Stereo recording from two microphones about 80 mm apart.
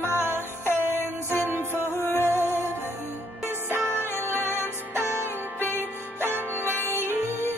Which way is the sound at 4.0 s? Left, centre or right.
Left.